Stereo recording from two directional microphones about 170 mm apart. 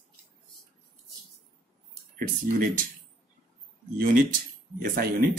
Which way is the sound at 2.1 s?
55° right (ahead or behind).